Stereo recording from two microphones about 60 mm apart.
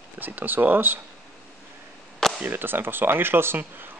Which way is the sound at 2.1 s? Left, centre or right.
Centre.